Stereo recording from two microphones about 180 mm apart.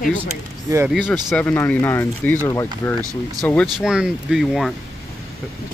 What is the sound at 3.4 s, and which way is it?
Speech, 5° left (ahead or behind).